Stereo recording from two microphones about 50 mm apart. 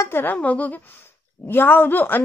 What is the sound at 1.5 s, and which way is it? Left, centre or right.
Speech, left.